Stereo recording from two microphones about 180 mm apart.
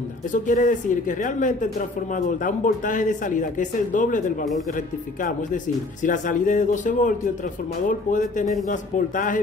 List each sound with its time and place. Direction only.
0.3 s speech: 45° left (ahead or behind)